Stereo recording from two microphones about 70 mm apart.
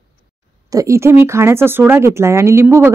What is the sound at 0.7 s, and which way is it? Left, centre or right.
Speech, right.